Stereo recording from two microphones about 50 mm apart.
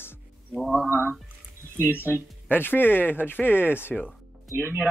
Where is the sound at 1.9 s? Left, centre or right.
Left.